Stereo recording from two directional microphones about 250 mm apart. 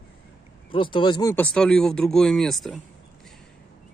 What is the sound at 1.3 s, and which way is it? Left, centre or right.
Speech, centre.